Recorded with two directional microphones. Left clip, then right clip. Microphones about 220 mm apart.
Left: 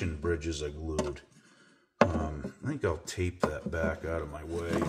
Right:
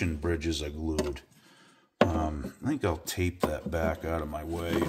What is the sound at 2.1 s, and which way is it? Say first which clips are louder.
Speech: right 4 dB; 50° right (ahead or behind).